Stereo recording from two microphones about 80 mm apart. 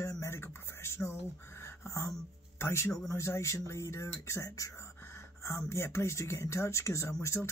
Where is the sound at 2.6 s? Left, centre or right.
Left.